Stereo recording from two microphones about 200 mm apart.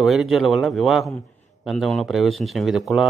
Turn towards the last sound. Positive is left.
turn(degrees=0)  # may be behind; listen again after turning